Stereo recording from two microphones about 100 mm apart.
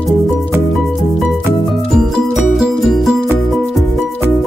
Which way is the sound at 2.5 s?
5° right (ahead or behind).